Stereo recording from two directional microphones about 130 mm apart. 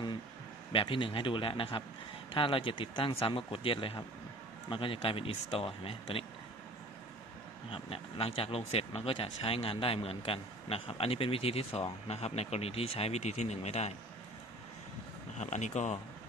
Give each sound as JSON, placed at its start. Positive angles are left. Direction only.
{"t": 0.7, "sound": "speech", "side_deg": 40}
{"t": 7.7, "sound": "speech", "side_deg": 45}
{"t": 15.3, "sound": "speech", "side_deg": 65}